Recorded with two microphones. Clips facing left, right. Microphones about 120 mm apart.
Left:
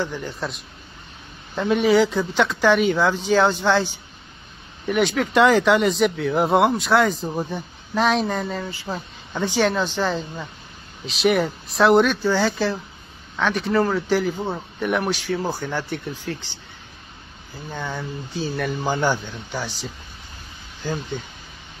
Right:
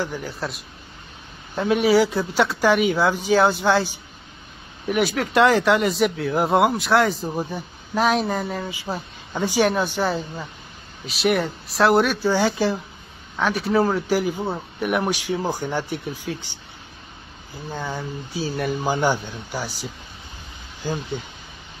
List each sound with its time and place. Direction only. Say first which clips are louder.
0.0 s speech: even; 5° right (ahead or behind)
17.6 s speech: right 1 dB; 10° right (ahead or behind)